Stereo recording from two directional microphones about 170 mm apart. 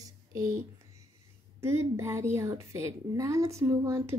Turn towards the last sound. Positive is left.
turn(degrees=-15)  # may be behind; listen again after turning